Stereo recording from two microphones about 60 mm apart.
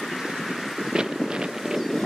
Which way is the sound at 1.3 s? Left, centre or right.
Centre.